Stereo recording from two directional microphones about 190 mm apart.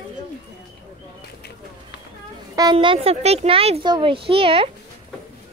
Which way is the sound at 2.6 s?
25° right (ahead or behind).